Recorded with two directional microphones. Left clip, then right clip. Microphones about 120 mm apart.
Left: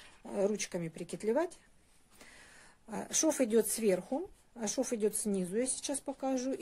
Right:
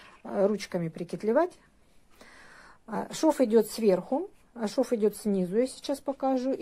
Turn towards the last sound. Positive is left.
turn(degrees=10)  # may be behind; listen again after turning